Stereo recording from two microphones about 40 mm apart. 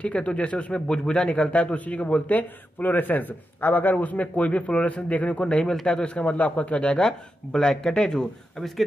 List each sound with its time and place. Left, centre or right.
0.0 s a man's voice: left
5.4 s speech: left